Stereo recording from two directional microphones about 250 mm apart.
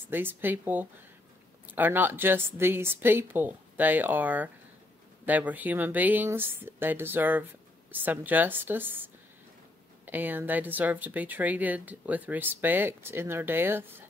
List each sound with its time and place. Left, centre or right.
0.1 s speech: centre